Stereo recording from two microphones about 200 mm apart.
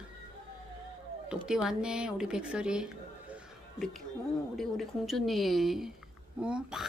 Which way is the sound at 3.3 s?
Centre (ahead or behind).